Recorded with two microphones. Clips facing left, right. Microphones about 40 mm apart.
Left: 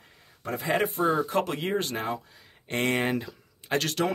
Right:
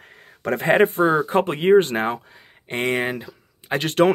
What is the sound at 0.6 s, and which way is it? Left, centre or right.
Speech, right.